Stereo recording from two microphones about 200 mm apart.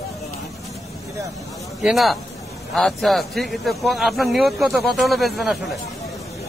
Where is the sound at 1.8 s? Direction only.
Centre (ahead or behind).